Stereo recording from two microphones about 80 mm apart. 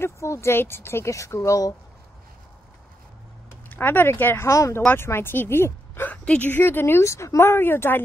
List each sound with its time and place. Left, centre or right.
0.0 s speech: left
3.6 s a woman's voice: left
4.5 s speech: left
6.2 s speech: centre
6.5 s a woman's voice: left